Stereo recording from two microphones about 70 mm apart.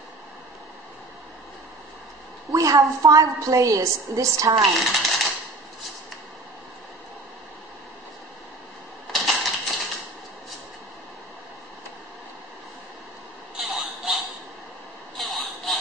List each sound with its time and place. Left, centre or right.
2.5 s a woman's voice: right
4.9 s typewriter: centre
9.1 s typewriter: centre
13.6 s a sound: centre